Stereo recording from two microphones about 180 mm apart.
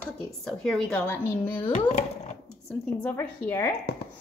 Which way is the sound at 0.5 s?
5° left (ahead or behind).